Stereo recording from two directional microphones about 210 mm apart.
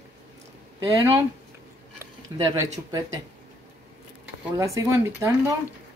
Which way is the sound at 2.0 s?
15° right (ahead or behind).